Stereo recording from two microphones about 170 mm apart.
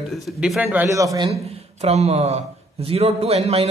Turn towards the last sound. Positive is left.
turn(degrees=-35)  # may be behind; listen again after turning